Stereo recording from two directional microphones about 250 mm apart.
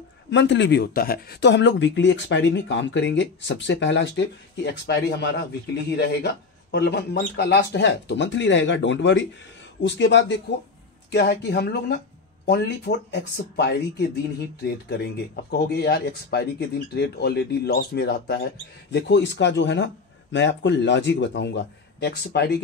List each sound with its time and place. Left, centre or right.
0.3 s speech: left